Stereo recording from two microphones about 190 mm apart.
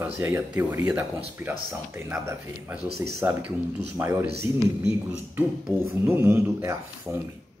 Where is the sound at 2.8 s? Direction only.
60° right (ahead or behind).